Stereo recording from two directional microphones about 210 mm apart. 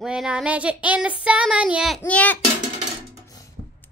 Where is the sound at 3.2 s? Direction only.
15° left (ahead or behind).